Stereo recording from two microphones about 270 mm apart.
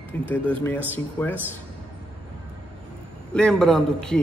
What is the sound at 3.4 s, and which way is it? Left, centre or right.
Speech, centre.